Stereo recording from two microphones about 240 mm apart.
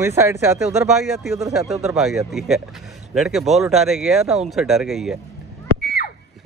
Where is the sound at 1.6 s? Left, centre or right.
Centre.